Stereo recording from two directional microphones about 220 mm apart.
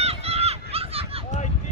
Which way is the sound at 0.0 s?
30° right (ahead or behind).